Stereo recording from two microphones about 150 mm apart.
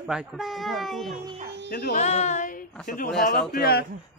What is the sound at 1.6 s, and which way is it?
Speech, 70° left (ahead or behind).